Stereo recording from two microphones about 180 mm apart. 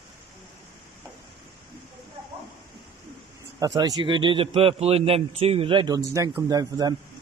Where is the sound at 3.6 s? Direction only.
20° right (ahead or behind).